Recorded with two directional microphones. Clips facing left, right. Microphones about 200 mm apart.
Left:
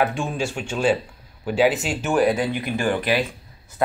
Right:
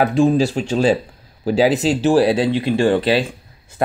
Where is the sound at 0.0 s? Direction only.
35° right (ahead or behind).